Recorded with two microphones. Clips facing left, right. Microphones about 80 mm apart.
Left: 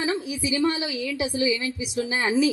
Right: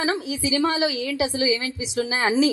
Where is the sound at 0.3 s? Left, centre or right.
Right.